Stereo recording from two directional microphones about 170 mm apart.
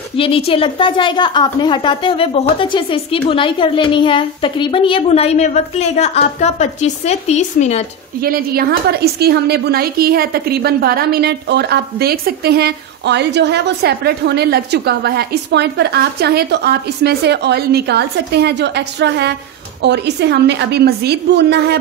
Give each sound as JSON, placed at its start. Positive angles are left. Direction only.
{"t": 0.2, "sound": "a woman's voice", "side_deg": 35}
{"t": 8.2, "sound": "a woman's voice", "side_deg": -60}